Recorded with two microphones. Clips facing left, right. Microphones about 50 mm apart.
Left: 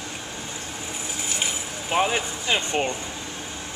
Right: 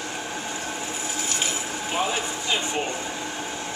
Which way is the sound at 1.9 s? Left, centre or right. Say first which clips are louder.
Left 4 dB; left.